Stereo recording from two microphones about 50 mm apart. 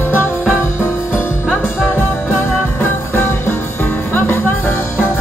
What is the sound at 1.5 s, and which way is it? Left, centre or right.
Music, left.